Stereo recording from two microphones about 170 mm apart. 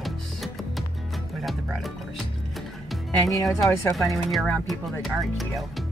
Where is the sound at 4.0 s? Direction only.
Centre (ahead or behind).